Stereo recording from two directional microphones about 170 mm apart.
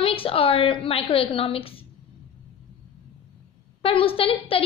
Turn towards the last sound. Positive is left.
turn(degrees=35)  # may be behind; listen again after turning